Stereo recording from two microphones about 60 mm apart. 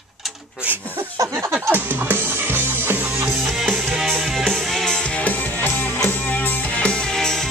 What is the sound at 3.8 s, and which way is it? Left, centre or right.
Music, centre.